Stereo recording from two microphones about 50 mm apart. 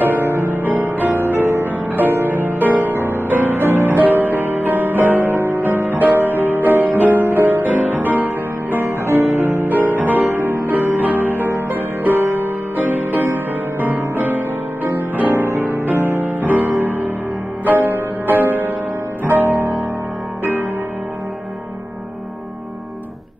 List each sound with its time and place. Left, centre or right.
0.0 s music: right
3.6 s music: right
3.9 s music: right
9.0 s music: right
15.3 s music: right